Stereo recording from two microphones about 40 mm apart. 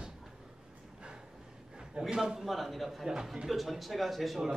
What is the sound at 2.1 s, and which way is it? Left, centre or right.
Speech, centre.